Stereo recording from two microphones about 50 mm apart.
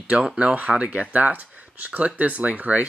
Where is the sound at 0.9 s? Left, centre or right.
Right.